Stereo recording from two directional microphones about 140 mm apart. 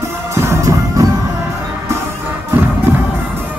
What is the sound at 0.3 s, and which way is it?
Music, 20° right (ahead or behind).